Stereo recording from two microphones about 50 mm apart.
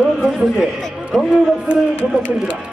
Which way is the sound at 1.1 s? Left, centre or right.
Centre.